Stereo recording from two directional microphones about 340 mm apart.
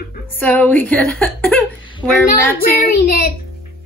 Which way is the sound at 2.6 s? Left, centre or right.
Left.